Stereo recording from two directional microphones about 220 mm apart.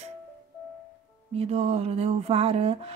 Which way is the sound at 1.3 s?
30° right (ahead or behind).